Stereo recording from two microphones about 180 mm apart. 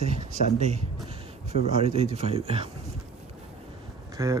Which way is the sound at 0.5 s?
35° right (ahead or behind).